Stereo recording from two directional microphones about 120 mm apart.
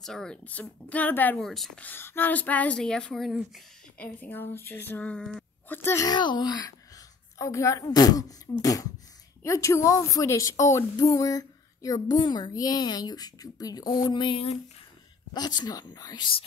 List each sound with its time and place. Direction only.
0.0 s speech: 5° left (ahead or behind)
1.4 s speech: centre (ahead or behind)
1.8 s speech: 15° left (ahead or behind); by 3.6 s centre (ahead or behind)
4.0 s speech: 15° left (ahead or behind)
6.0 s a woman's voice: 40° left (ahead or behind)